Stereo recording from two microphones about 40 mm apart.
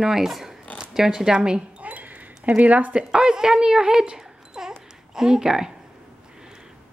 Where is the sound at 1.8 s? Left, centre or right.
Right.